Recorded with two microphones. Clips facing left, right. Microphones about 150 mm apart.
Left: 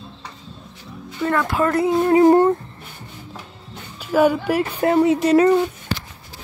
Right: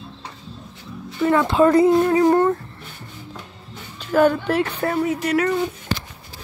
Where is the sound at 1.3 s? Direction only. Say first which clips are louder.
Right 4 dB; 20° right (ahead or behind).